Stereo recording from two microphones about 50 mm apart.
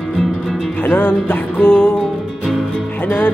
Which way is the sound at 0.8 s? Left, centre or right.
Left.